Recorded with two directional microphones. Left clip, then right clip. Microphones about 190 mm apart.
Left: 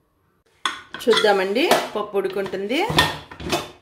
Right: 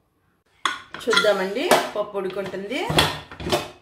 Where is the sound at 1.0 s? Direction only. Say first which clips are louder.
Left 2 dB; 40° left (ahead or behind).